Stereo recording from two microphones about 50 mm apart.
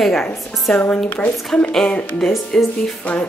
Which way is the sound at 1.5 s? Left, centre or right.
Centre.